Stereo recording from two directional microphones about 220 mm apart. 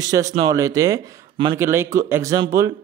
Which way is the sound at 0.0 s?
15° right (ahead or behind).